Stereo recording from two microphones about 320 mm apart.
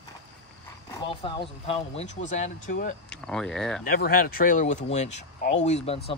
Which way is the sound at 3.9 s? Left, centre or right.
Left.